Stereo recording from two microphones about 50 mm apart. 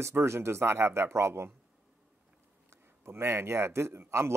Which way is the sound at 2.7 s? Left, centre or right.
Right.